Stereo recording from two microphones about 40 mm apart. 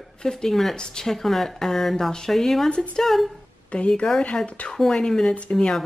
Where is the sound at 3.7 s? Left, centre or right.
Left.